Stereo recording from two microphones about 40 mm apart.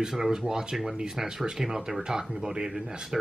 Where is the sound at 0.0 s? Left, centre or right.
Centre.